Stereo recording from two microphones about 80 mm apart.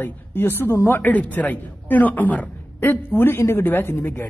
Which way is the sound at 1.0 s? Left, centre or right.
Centre.